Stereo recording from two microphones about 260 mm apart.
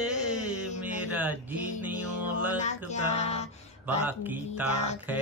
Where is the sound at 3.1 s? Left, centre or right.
Left.